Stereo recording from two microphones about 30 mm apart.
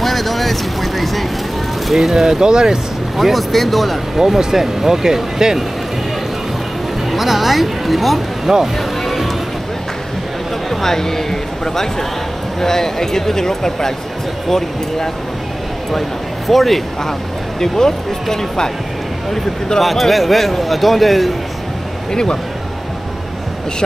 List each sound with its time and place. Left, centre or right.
0.0 s a sound: centre
1.9 s speech: centre
2.2 s speech: right
3.2 s a man's voice: centre
4.4 s speech: centre
7.1 s a man's voice: centre
8.5 s speech: centre
9.0 s music: centre
10.7 s speech: centre
16.4 s a man's voice: centre
17.6 s speech: centre
19.8 s a man's voice: centre
22.1 s speech: left